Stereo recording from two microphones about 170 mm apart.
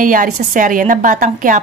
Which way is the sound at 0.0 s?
55° right (ahead or behind).